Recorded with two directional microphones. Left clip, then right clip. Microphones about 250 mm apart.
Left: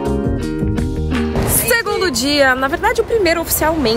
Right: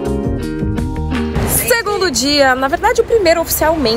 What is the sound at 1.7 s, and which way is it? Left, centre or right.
Speech, centre.